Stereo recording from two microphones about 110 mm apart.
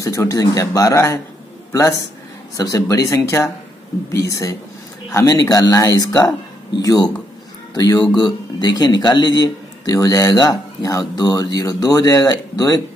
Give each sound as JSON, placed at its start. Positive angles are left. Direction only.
{"t": 0.0, "sound": "speech", "side_deg": 30}